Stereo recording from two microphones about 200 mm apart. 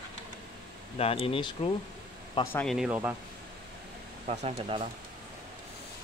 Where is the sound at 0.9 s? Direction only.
30° left (ahead or behind).